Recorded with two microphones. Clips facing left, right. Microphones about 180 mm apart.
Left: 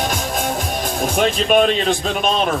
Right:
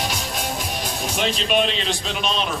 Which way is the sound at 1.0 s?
50° left (ahead or behind).